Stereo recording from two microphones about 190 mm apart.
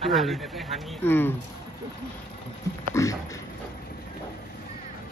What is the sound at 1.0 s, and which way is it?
Speech, 10° left (ahead or behind).